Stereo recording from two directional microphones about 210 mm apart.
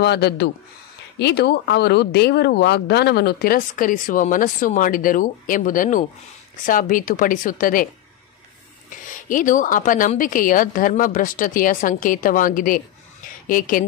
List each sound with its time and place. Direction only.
0.0 s a woman's voice: 50° left (ahead or behind)
9.1 s a woman's voice: 40° left (ahead or behind)